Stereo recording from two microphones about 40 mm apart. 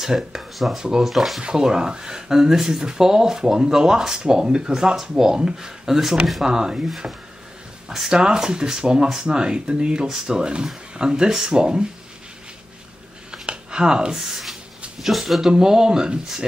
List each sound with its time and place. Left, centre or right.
0.0 s speech: centre
0.7 s speech: centre
1.0 s speech: centre
1.4 s speech: centre
8.1 s speech: centre
13.3 s a sound: right
14.3 s a sound: centre
15.0 s speech: centre
15.4 s speech: centre